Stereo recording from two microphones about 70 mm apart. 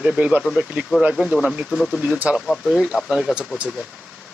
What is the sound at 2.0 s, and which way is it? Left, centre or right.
Speech, centre.